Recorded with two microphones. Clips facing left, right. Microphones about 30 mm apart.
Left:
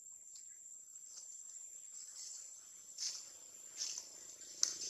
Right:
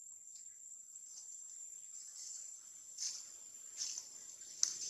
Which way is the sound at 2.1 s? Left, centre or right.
Left.